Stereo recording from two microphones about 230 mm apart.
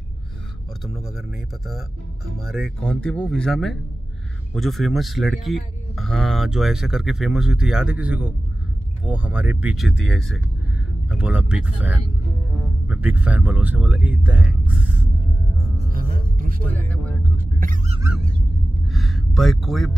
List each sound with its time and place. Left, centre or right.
2.4 s speech: centre
15.9 s music: right
17.6 s goose: right
18.9 s a sound: centre